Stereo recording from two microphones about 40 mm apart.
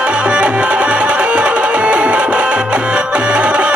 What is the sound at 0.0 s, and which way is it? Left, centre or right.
Music, right.